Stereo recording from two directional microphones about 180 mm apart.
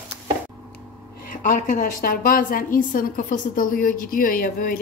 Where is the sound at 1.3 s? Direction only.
45° left (ahead or behind).